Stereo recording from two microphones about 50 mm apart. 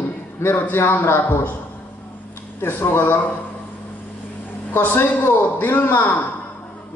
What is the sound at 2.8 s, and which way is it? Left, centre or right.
Speech, left.